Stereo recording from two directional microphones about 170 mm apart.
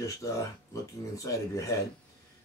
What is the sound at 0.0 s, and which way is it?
Speech, 20° left (ahead or behind).